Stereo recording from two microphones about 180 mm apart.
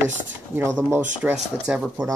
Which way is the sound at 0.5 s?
15° right (ahead or behind).